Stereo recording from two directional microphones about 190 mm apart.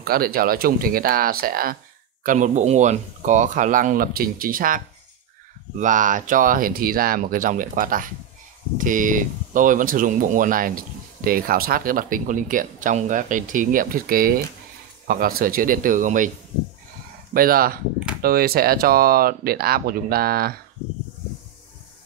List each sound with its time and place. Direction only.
0.0 s speech: 50° right (ahead or behind)
17.3 s speech: 50° right (ahead or behind)